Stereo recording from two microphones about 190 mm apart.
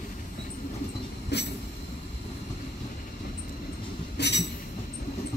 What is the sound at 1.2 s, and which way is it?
Train, 60° left (ahead or behind).